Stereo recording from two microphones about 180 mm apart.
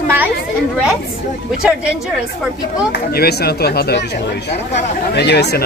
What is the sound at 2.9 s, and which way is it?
Speech, 60° left (ahead or behind).